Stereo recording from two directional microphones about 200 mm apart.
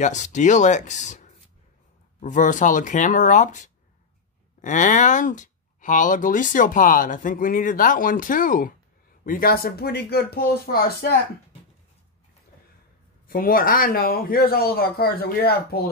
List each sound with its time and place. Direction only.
0.0 s speech: 35° left (ahead or behind)
13.3 s speech: 45° left (ahead or behind)